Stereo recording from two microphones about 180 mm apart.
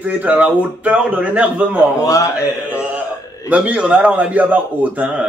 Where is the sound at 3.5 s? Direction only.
10° right (ahead or behind).